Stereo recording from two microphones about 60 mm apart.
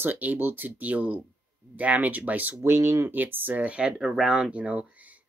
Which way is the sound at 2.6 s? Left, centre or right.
Right.